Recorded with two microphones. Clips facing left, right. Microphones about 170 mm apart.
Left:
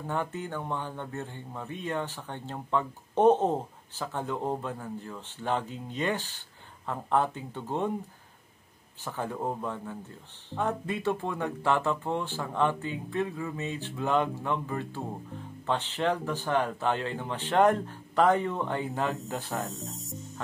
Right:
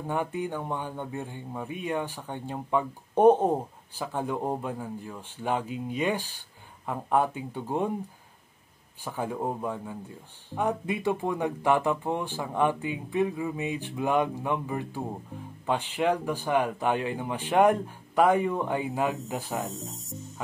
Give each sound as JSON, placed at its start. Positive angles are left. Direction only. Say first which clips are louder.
{"t": 0.0, "sound": "speech", "louder": "right 3 dB", "side_deg": -15}
{"t": 9.0, "sound": "speech", "louder": "right 2 dB", "side_deg": -10}
{"t": 19.5, "sound": "speech", "louder": "right 1 dB", "side_deg": 0}